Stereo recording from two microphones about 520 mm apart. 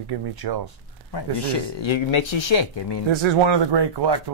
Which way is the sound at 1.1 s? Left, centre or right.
Left.